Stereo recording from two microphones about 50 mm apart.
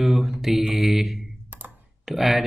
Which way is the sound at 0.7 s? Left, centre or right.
Centre.